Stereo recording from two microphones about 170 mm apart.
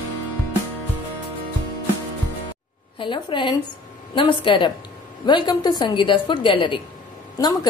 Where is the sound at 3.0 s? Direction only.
30° left (ahead or behind).